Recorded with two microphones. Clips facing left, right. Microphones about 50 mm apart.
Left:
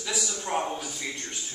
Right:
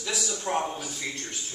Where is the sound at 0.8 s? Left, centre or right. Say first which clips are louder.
Right 1 dB; centre.